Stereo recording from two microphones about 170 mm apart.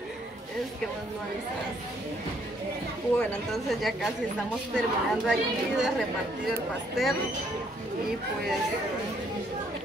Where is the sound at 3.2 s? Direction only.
5° left (ahead or behind).